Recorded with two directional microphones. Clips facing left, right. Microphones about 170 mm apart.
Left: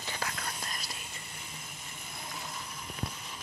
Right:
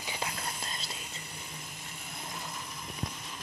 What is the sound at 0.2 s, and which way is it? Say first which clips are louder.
Whispering: right 1 dB; 25° right (ahead or behind).